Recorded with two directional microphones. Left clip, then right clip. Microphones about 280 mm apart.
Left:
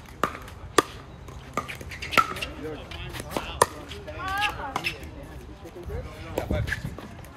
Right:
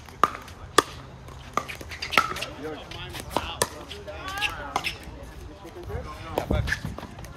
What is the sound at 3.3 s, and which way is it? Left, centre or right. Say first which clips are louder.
Chop: right 3 dB; centre.